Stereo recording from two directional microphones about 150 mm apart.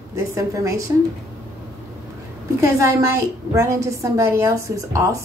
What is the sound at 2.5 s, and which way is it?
A woman's voice, 20° right (ahead or behind).